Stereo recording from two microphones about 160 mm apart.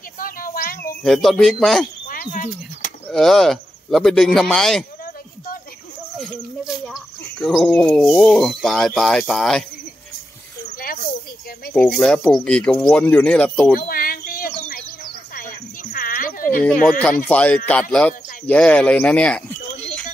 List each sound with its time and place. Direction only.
0.2 s a sound: 60° left (ahead or behind)
1.0 s speech: centre (ahead or behind)
2.0 s a sound: 55° left (ahead or behind)
3.1 s speech: centre (ahead or behind)
6.1 s speech: centre (ahead or behind)
11.7 s speech: 5° left (ahead or behind)
13.7 s a sound: 65° left (ahead or behind)
15.3 s cricket: 60° left (ahead or behind)
17.3 s speech: 10° left (ahead or behind)